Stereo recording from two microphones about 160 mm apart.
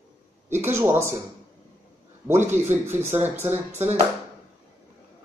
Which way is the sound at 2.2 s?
15° right (ahead or behind).